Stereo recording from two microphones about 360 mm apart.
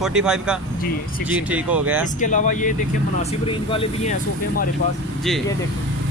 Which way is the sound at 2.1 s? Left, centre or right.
Left.